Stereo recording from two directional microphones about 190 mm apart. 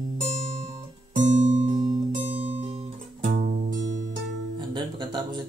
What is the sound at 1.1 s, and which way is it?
Music, 40° right (ahead or behind).